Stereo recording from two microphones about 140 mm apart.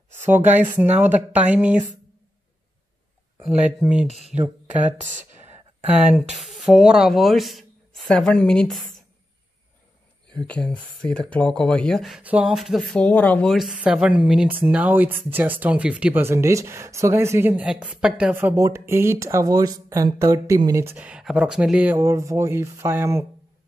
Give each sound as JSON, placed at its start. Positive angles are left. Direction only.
{"t": 0.2, "sound": "speech", "side_deg": -15}
{"t": 3.4, "sound": "speech", "side_deg": -10}
{"t": 6.4, "sound": "speech", "side_deg": -5}
{"t": 10.3, "sound": "speech", "side_deg": 10}
{"t": 12.2, "sound": "speech", "side_deg": -10}